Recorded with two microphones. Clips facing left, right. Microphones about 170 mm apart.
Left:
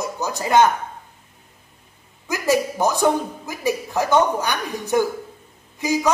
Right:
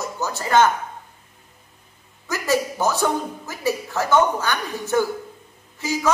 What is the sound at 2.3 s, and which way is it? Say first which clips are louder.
A man's voice: left 2 dB; 15° left (ahead or behind).